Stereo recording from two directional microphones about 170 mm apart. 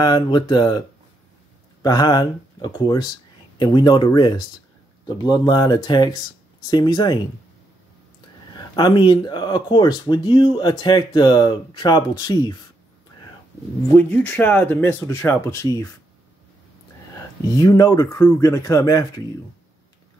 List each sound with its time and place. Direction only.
0.0 s speech: 25° left (ahead or behind)
8.5 s speech: 25° left (ahead or behind)
13.9 s speech: 10° left (ahead or behind)
17.6 s speech: 20° left (ahead or behind)